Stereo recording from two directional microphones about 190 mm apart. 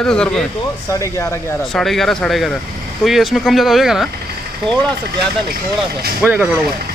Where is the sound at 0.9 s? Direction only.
15° left (ahead or behind).